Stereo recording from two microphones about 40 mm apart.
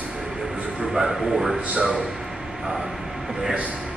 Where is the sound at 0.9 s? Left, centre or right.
Centre.